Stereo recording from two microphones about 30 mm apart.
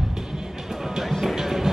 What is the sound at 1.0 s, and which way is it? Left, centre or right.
Music, centre.